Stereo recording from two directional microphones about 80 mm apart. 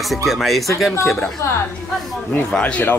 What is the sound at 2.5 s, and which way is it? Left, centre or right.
Speech, centre.